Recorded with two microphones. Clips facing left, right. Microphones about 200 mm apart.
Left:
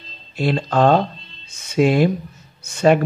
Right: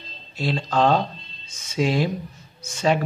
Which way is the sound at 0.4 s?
55° left (ahead or behind).